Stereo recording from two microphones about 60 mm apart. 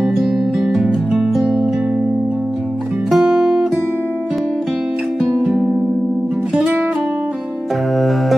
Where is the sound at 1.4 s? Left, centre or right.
Centre.